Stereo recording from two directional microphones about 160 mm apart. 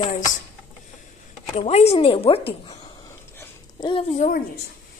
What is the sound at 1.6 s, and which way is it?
A woman's voice, 40° left (ahead or behind).